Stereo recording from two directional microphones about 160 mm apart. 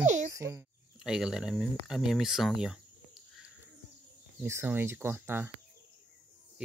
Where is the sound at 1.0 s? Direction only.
5° right (ahead or behind).